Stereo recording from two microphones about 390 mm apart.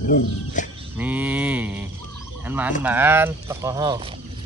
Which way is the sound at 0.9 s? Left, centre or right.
Centre.